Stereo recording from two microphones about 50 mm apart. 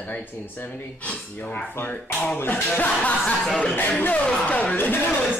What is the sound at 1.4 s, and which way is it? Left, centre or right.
Speech, left.